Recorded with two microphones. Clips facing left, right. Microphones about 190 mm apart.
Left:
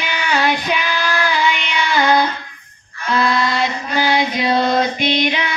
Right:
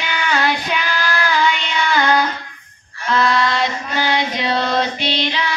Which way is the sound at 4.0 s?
10° left (ahead or behind).